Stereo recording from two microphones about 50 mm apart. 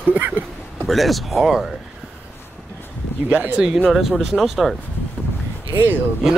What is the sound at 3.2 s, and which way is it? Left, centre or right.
Speech, right.